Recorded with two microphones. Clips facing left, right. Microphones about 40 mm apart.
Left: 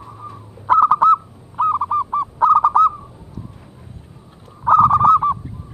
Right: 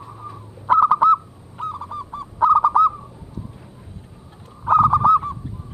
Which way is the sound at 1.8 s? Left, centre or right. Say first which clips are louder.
Left 12 dB; left.